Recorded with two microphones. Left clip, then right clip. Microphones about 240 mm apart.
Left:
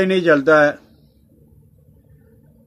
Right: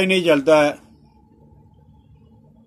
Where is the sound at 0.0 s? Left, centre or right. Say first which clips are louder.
Left 2 dB; left.